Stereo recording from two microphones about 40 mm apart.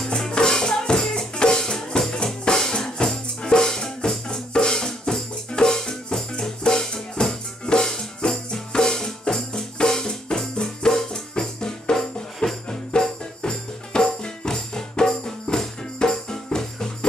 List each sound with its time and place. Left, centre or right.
0.0 s music: centre